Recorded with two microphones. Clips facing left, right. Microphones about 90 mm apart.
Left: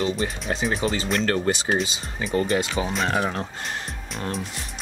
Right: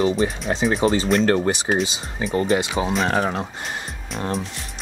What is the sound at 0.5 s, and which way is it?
Speech, 35° right (ahead or behind).